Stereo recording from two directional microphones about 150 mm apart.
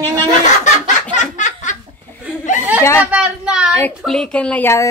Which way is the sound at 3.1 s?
5° right (ahead or behind).